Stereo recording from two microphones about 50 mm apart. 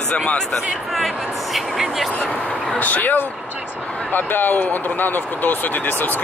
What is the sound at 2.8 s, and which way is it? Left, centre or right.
Speech, left.